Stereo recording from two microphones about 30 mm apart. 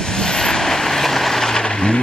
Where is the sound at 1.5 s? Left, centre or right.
Left.